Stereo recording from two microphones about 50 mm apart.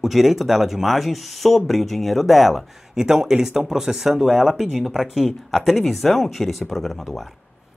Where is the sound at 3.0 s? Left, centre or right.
Centre.